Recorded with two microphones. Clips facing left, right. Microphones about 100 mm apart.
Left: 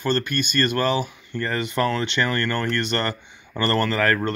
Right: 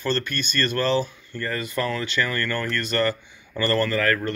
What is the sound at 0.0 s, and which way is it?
Speech, 15° left (ahead or behind).